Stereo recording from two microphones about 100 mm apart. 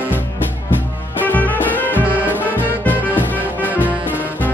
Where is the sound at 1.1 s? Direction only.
15° left (ahead or behind).